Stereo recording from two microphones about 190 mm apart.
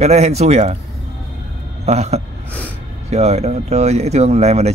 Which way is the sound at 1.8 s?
35° right (ahead or behind).